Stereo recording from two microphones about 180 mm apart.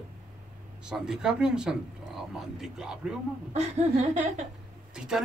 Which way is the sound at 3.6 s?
35° right (ahead or behind).